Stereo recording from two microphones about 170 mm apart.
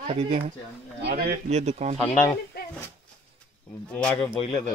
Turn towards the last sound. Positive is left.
turn(degrees=35)  # may be behind; listen again after turning